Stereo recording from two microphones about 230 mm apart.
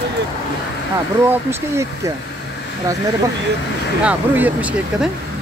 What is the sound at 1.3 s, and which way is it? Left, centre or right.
Speech, centre.